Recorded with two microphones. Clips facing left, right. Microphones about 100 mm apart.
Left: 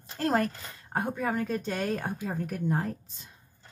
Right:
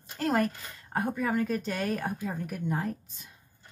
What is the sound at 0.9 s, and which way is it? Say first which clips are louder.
Speech: right 1 dB; 20° left (ahead or behind).